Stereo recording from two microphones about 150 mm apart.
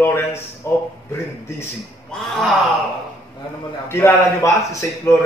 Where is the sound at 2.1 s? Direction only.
Centre (ahead or behind).